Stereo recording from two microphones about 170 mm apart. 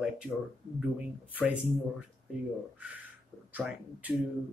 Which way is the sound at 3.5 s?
10° right (ahead or behind).